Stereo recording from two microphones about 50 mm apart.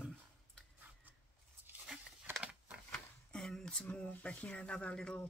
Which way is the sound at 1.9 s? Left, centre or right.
Centre.